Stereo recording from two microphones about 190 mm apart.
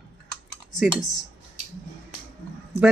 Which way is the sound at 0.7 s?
Centre (ahead or behind).